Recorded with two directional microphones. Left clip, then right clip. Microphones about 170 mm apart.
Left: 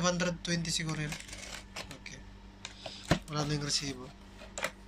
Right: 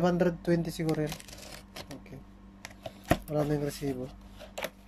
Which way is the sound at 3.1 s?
45° right (ahead or behind).